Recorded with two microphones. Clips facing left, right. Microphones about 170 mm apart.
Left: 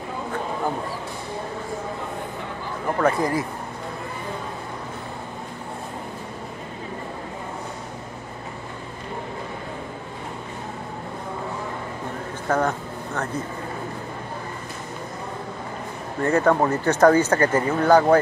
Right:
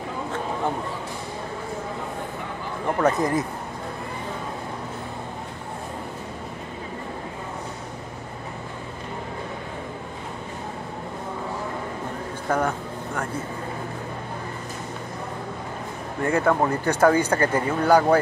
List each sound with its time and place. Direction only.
3.0 s speech: 20° right (ahead or behind)
12.4 s a sound: 10° right (ahead or behind)
16.3 s speech: 10° right (ahead or behind)